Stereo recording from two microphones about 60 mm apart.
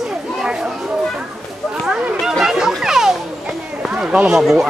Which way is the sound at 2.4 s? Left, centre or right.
Centre.